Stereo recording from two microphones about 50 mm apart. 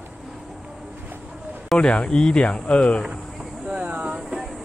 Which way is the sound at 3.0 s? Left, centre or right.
Centre.